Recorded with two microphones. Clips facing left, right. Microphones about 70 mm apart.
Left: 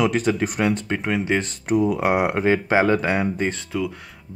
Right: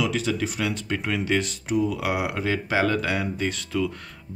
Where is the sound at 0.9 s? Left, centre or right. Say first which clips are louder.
Left 3 dB; left.